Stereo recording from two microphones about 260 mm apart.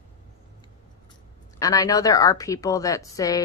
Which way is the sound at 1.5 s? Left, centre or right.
Centre.